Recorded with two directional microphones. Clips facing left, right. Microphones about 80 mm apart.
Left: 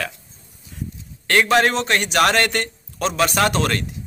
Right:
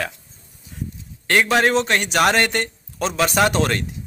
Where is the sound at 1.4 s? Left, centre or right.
Centre.